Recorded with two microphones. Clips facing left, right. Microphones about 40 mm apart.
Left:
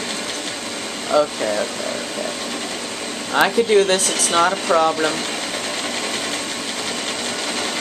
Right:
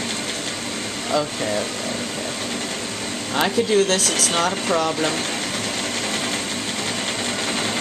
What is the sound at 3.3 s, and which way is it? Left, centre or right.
Speech, centre.